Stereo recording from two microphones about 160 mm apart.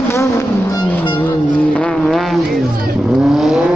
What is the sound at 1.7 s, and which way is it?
Vehicle, 5° left (ahead or behind).